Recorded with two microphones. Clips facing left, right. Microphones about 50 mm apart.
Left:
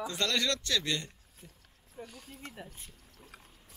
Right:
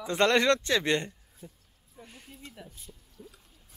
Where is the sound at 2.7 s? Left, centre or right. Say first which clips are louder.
Right 1 dB; left.